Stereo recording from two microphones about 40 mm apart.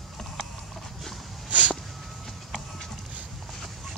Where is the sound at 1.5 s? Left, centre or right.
Right.